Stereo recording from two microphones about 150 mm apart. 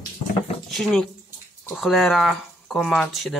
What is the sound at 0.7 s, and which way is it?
Speech, centre (ahead or behind).